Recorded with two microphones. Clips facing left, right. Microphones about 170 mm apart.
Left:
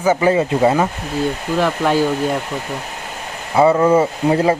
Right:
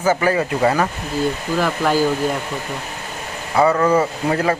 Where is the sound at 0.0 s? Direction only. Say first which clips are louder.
Left 3 dB; 20° left (ahead or behind).